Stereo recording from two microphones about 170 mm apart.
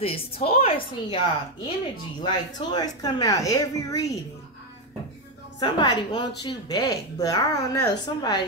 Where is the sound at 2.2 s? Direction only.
25° left (ahead or behind).